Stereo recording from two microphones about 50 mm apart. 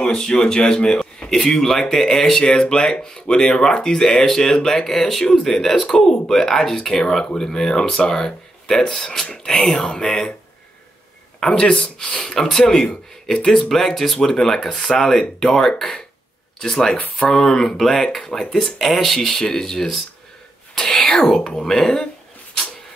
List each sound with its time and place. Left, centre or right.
0.0 s speech: centre
11.3 s speech: centre
12.8 s speech: left
13.5 s speech: centre
14.3 s speech: centre